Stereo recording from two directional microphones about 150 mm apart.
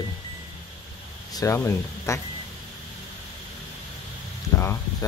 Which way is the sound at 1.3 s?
20° left (ahead or behind).